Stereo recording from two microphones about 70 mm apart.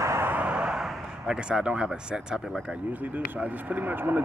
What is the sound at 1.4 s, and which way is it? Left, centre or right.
Speech, centre.